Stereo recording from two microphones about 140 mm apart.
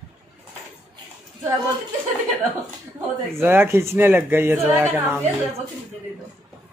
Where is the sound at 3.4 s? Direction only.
15° right (ahead or behind).